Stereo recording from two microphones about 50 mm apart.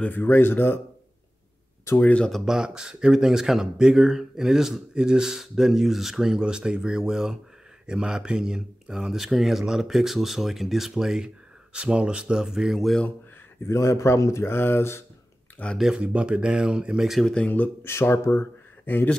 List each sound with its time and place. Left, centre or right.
0.1 s speech: left
2.0 s speech: left
2.4 s speech: centre
13.7 s a man's voice: left
14.5 s speech: left
15.6 s speech: left
16.0 s speech: right
17.8 s speech: left
18.9 s speech: left